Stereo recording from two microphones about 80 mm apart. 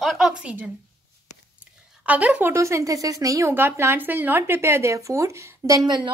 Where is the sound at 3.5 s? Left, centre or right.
Right.